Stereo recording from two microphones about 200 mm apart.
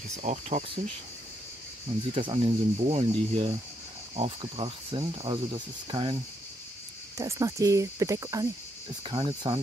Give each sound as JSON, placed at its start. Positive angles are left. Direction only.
{"t": 0.1, "sound": "speech", "side_deg": -35}
{"t": 2.1, "sound": "speech", "side_deg": -25}
{"t": 7.2, "sound": "cricket", "side_deg": -15}
{"t": 9.0, "sound": "speech", "side_deg": -25}